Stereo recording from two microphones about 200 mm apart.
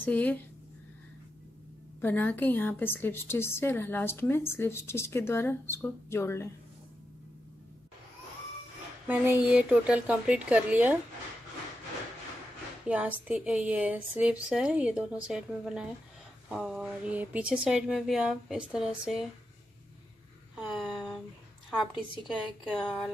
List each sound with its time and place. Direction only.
0.0 s a woman's voice: 10° left (ahead or behind)
2.0 s a woman's voice: 10° left (ahead or behind)
9.0 s speech: 10° right (ahead or behind)
12.8 s a woman's voice: 5° right (ahead or behind)
20.5 s a sound: centre (ahead or behind)
21.6 s a woman's voice: centre (ahead or behind)